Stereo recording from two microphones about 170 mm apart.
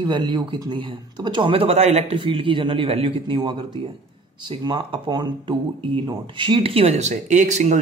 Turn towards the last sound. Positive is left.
turn(degrees=-45)  # may be behind; listen again after turning